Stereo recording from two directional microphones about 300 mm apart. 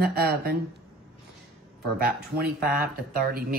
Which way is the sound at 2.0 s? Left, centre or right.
Right.